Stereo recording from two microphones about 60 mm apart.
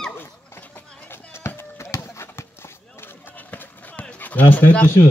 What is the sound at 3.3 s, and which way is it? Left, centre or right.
Run, left.